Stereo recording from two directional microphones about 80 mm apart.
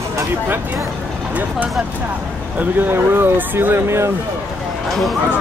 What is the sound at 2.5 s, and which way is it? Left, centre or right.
Speech, right.